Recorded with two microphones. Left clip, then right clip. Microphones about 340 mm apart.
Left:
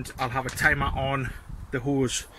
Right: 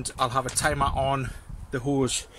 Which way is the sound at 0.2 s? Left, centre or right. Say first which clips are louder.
Even; centre.